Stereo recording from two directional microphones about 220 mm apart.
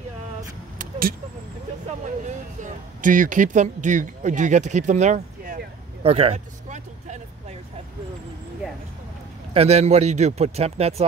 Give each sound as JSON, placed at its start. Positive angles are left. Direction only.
{"t": 0.4, "sound": "vehicle", "side_deg": -40}
{"t": 1.9, "sound": "speech", "side_deg": -35}
{"t": 6.0, "sound": "a sound", "side_deg": -25}
{"t": 9.5, "sound": "speech", "side_deg": -30}